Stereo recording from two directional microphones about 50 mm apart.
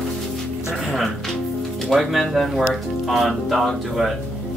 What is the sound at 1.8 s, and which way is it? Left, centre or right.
Speech, centre.